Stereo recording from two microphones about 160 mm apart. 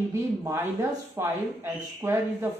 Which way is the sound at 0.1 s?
20° right (ahead or behind).